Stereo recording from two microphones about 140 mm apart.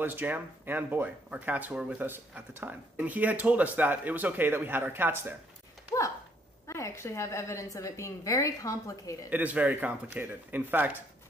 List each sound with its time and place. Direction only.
0.0 s speech: 15° right (ahead or behind)
6.7 s a woman's voice: 20° left (ahead or behind)
9.3 s speech: 10° right (ahead or behind)